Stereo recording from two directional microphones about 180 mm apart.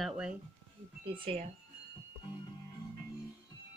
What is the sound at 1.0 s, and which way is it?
Speech, 30° right (ahead or behind).